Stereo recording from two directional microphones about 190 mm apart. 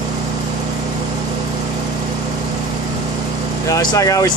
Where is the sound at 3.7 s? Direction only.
20° left (ahead or behind).